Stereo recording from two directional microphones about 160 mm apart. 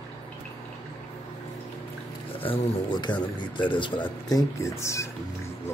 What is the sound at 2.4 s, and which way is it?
Speech, 30° left (ahead or behind).